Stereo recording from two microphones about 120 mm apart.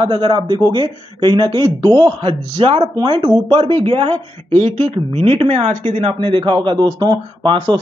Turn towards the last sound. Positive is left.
turn(degrees=-35)  # may be behind; listen again after turning